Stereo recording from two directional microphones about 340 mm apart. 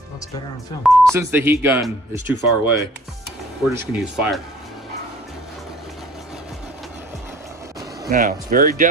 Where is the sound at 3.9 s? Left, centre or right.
Centre.